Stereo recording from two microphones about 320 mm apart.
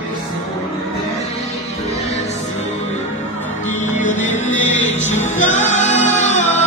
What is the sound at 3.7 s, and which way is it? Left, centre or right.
Music, left.